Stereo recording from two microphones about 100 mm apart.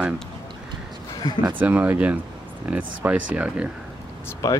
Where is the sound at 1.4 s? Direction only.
15° right (ahead or behind).